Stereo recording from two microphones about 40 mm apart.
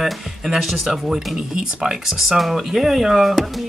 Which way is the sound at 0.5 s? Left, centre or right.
Centre.